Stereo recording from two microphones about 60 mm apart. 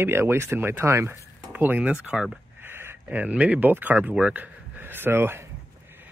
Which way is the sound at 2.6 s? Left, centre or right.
Right.